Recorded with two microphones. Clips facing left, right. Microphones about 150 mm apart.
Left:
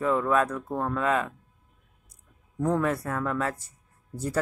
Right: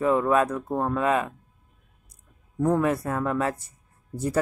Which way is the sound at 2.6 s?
15° right (ahead or behind).